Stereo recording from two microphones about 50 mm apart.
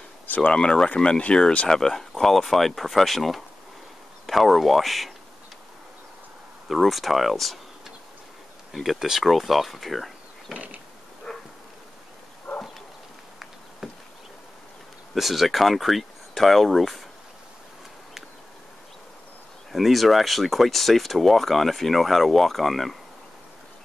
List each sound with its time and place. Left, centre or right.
0.5 s speech: centre
6.7 s speech: centre
9.0 s speech: centre
10.5 s a sound: right
11.3 s bee: centre
12.5 s bow-wow: centre
15.1 s speech: centre
19.7 s speech: centre